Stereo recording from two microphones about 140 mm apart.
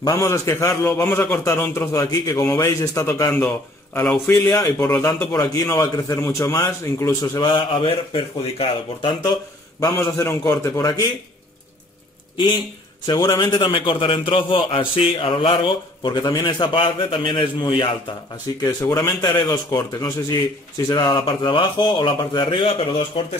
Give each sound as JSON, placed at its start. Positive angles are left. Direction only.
{"t": 0.0, "sound": "a man's voice", "side_deg": 20}
{"t": 3.3, "sound": "a man's voice", "side_deg": 10}
{"t": 5.0, "sound": "a man's voice", "side_deg": 25}
{"t": 9.8, "sound": "a man's voice", "side_deg": 20}
{"t": 12.4, "sound": "speech", "side_deg": 35}
{"t": 18.8, "sound": "a man's voice", "side_deg": 25}